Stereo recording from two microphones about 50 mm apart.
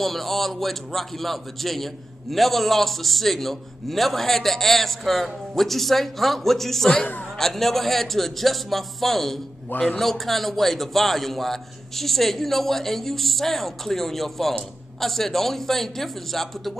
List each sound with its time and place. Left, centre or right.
0.0 s a man's voice: centre